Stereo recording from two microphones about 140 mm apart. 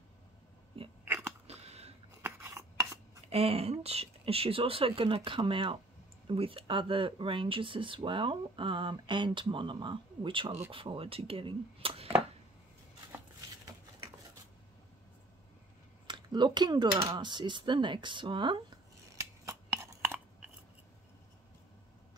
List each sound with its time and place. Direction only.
1.0 s biting: 15° right (ahead or behind)
1.5 s a sound: 50° right (ahead or behind)
2.2 s filing: 20° right (ahead or behind)
3.3 s speech: 45° right (ahead or behind)
16.1 s speech: 30° right (ahead or behind)
19.1 s scissors: 20° right (ahead or behind)